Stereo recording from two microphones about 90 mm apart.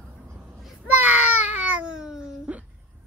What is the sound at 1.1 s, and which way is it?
Baby cry, 15° right (ahead or behind).